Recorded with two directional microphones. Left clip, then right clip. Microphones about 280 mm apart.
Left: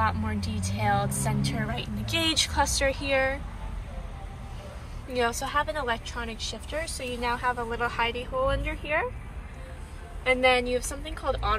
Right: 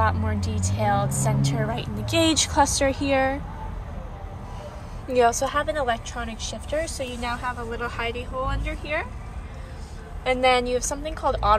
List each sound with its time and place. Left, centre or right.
0.3 s a woman's voice: centre
5.1 s a woman's voice: centre
10.2 s a woman's voice: centre